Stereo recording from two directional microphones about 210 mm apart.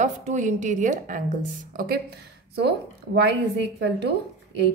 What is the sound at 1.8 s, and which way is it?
Speech, 50° right (ahead or behind).